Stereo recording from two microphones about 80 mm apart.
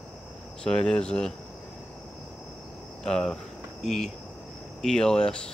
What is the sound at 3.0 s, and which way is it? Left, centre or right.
Speech, centre.